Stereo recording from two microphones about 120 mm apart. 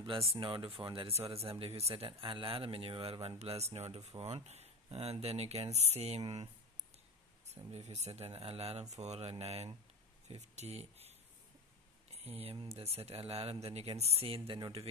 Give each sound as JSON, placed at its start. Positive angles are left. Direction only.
{"t": 0.0, "sound": "speech", "side_deg": -50}
{"t": 7.7, "sound": "speech", "side_deg": -70}
{"t": 12.1, "sound": "a sound", "side_deg": -60}
{"t": 12.6, "sound": "speech", "side_deg": -55}